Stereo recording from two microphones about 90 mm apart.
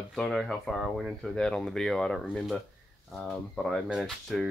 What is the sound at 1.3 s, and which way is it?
Speech, 10° left (ahead or behind).